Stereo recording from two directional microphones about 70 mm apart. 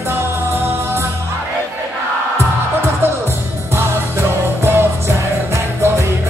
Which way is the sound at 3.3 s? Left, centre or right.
Right.